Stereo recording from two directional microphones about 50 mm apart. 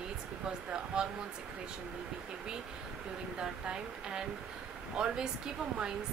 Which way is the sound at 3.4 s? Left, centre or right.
Centre.